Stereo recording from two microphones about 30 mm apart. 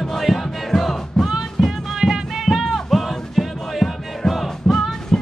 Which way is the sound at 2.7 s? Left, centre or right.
Centre.